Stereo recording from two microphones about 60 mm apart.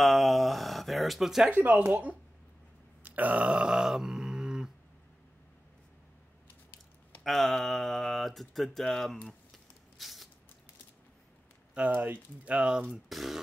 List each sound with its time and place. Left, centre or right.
0.0 s a sound: centre
1.5 s speech: right
3.0 s groan: right; by 4.6 s centre
7.2 s speech: centre
9.9 s a sound: centre
11.9 s speech: right
12.4 s speech: centre
13.1 s speech: centre